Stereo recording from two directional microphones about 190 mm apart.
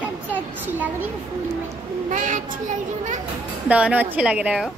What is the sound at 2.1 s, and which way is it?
Speech, 40° right (ahead or behind).